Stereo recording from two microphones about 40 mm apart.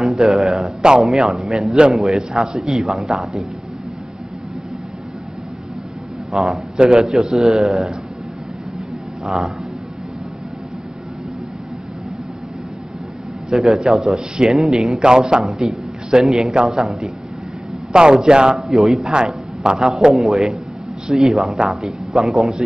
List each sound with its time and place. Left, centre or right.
0.0 s a man's voice: centre
6.3 s a man's voice: centre
9.2 s a man's voice: centre
13.5 s a man's voice: centre
15.0 s a man's voice: right
17.9 s a man's voice: right
18.7 s a man's voice: centre
19.1 s a man's voice: right
20.2 s a man's voice: centre